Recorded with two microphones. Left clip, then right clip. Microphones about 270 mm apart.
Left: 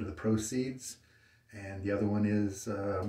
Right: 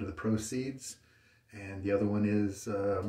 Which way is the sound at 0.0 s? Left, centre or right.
Centre.